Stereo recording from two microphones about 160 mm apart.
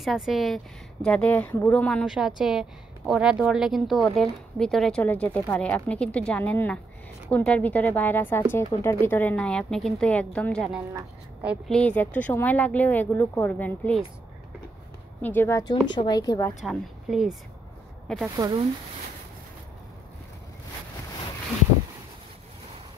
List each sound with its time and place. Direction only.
0.0 s speech: centre (ahead or behind)
15.2 s speech: 15° left (ahead or behind)
15.9 s a woman's voice: 25° left (ahead or behind)
16.6 s speech: centre (ahead or behind)